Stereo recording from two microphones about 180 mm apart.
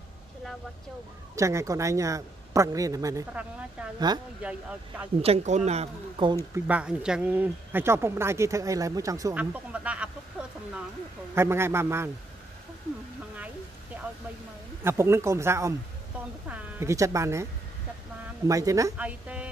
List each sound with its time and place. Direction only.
1.3 s speech: 15° right (ahead or behind)
4.4 s speech: 5° right (ahead or behind)
5.2 s speech: 35° right (ahead or behind)
6.5 s speech: 5° right (ahead or behind)
9.4 s speech: 10° right (ahead or behind)
11.3 s speech: 15° right (ahead or behind)
13.9 s a sound: 10° right (ahead or behind)
14.8 s speech: 15° right (ahead or behind)
18.5 s speech: 20° right (ahead or behind)
19.0 s speech: 5° right (ahead or behind)